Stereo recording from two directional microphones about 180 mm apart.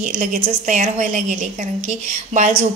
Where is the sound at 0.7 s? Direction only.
45° right (ahead or behind).